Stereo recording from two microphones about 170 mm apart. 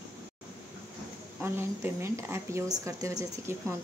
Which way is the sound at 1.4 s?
15° right (ahead or behind).